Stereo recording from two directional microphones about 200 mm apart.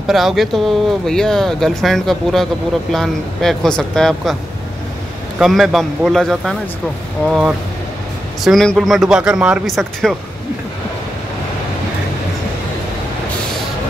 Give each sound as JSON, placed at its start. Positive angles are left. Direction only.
{"t": 0.0, "sound": "speech", "side_deg": 0}
{"t": 5.4, "sound": "speech", "side_deg": 0}